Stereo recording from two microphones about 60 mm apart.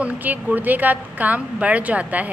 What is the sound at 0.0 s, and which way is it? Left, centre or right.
A woman's voice, right.